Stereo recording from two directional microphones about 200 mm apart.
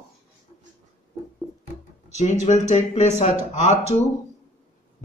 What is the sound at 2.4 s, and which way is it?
Speech, 35° left (ahead or behind).